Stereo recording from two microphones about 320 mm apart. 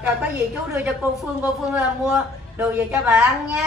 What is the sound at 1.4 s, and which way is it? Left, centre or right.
A man's voice, centre.